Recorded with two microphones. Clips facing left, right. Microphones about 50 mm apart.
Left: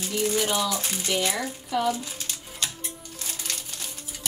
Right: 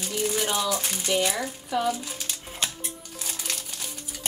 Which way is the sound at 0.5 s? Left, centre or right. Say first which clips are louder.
Even; centre.